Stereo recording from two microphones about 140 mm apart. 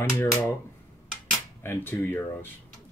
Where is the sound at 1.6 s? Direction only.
15° left (ahead or behind).